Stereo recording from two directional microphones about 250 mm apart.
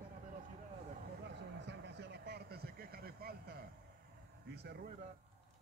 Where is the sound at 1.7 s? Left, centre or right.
Right.